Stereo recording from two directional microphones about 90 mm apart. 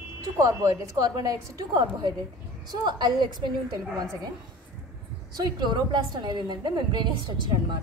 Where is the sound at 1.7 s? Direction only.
55° right (ahead or behind).